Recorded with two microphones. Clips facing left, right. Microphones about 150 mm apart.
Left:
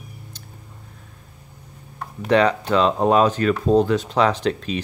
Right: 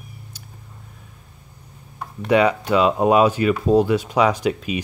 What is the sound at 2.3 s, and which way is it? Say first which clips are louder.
Speech: right 1 dB; 10° right (ahead or behind).